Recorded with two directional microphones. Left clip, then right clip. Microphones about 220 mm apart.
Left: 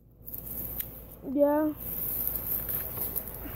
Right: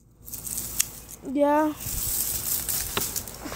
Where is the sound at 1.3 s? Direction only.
25° right (ahead or behind).